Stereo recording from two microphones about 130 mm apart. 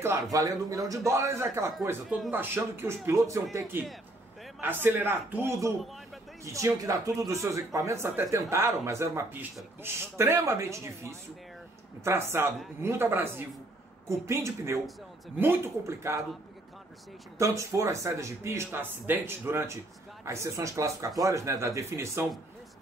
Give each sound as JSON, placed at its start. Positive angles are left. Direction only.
{"t": 0.0, "sound": "a man's voice", "side_deg": -25}
{"t": 17.4, "sound": "speech", "side_deg": -25}